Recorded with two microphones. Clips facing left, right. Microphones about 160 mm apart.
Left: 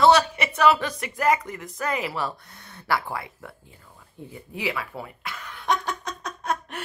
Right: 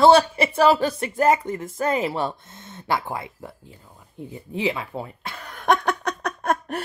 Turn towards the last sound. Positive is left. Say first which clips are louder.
# right 5 dB
turn(degrees=-60)  # may be behind; listen again after turning